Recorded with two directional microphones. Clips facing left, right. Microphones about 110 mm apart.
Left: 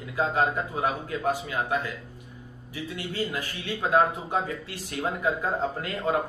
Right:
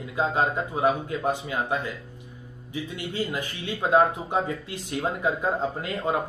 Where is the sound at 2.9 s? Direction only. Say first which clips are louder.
Right 1 dB; 20° right (ahead or behind).